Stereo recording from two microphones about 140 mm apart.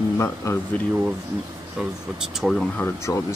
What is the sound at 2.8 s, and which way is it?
Speech, 20° left (ahead or behind).